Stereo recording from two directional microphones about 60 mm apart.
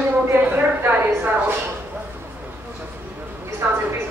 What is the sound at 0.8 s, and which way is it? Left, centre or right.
Speech, right.